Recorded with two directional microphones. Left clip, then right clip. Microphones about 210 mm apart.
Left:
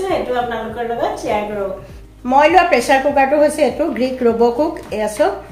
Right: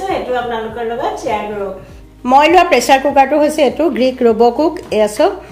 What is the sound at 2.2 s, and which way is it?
A woman's voice, 50° right (ahead or behind).